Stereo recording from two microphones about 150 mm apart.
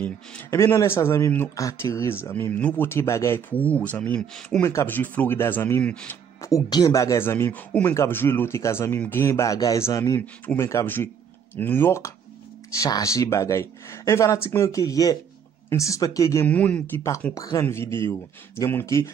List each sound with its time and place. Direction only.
0.0 s a man's voice: 15° left (ahead or behind)
6.4 s a man's voice: 25° left (ahead or behind)